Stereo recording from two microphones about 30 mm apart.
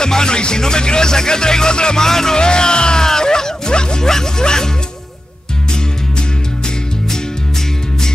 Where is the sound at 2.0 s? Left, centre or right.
Centre.